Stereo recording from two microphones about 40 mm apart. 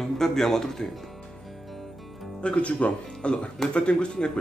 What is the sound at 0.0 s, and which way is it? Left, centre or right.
Speech, centre.